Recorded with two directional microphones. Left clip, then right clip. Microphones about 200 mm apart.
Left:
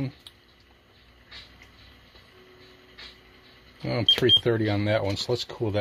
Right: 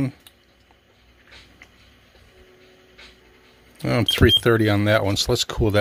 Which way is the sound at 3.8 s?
35° right (ahead or behind).